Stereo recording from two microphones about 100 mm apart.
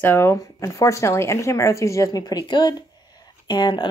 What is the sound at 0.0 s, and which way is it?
Speech, 25° left (ahead or behind).